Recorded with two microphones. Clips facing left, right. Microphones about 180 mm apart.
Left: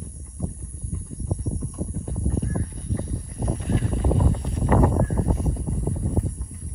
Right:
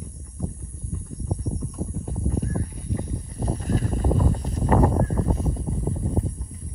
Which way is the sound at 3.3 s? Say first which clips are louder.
Even; 35° right (ahead or behind).